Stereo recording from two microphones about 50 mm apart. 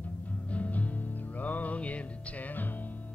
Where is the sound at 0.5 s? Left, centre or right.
Left.